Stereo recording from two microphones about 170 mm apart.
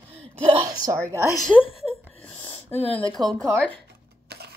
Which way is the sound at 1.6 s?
35° left (ahead or behind).